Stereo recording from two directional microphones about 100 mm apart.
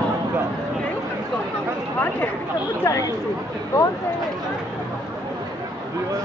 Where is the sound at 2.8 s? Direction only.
35° left (ahead or behind).